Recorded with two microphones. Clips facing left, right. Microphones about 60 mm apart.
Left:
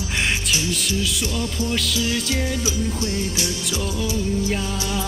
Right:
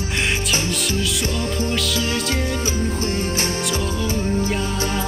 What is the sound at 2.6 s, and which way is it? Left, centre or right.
Music, right.